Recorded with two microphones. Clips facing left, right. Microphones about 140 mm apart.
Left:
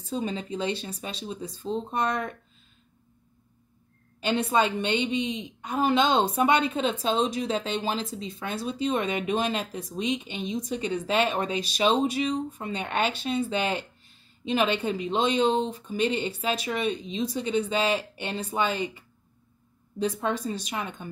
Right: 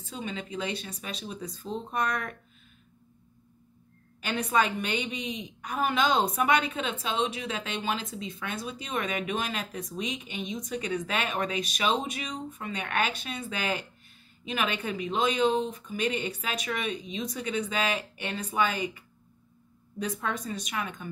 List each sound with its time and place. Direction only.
0.0 s a woman's voice: 35° left (ahead or behind)
4.2 s a woman's voice: 25° left (ahead or behind)
20.0 s a woman's voice: 30° left (ahead or behind)